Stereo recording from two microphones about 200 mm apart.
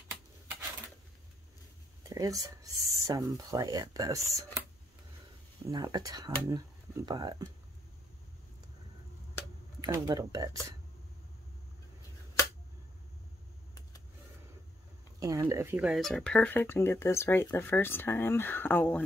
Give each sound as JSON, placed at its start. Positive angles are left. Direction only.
{"t": 2.0, "sound": "speech", "side_deg": -15}
{"t": 5.7, "sound": "speech", "side_deg": -20}
{"t": 9.8, "sound": "speech", "side_deg": -15}
{"t": 15.1, "sound": "speech", "side_deg": -15}